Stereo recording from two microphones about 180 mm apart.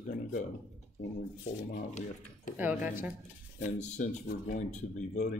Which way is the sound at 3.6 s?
40° left (ahead or behind).